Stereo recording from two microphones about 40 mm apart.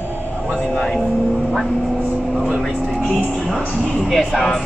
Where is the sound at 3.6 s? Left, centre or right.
Left.